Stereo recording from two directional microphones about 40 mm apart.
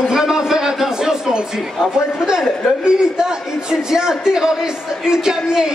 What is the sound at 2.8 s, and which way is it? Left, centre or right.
Speech, centre.